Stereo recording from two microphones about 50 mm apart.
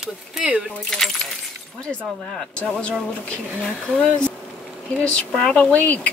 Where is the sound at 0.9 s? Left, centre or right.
Centre.